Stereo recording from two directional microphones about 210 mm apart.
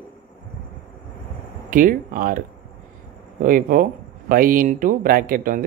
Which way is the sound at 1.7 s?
40° right (ahead or behind).